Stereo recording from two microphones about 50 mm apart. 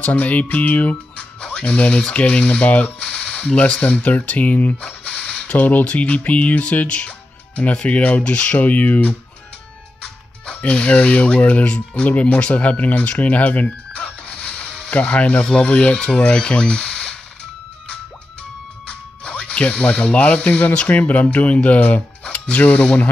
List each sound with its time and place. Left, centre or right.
0.0 s music: left
1.1 s speech: centre
4.8 s a sound: centre
5.5 s speech: left
10.6 s speech: left
18.9 s speech: centre